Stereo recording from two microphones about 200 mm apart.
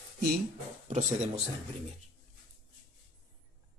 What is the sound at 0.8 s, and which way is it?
Speech, 35° right (ahead or behind).